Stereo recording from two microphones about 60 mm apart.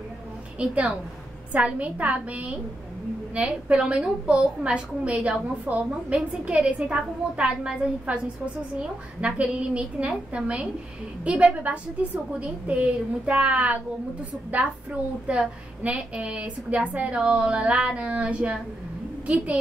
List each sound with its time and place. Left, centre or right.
1.5 s a woman's voice: right
15.2 s a woman's voice: right